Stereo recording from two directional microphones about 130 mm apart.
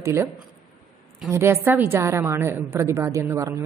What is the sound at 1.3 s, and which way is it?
A woman's voice, 20° right (ahead or behind).